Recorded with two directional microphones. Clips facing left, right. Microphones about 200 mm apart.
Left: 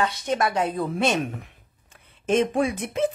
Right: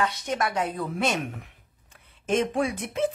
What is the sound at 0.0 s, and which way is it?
A woman's voice, 30° left (ahead or behind).